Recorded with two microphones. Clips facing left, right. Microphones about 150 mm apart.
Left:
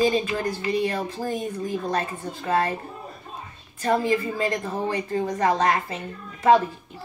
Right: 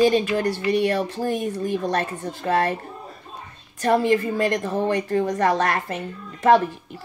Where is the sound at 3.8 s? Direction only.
70° right (ahead or behind).